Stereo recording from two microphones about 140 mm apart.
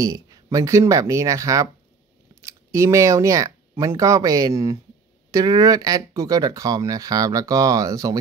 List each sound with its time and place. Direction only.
0.0 s speech: 25° right (ahead or behind)